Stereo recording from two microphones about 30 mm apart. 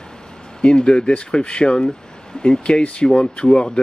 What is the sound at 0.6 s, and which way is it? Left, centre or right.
Speech, left.